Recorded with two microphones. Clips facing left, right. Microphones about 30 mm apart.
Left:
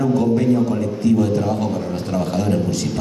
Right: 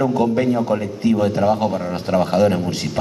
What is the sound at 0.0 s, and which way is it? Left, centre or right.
A man's voice, right.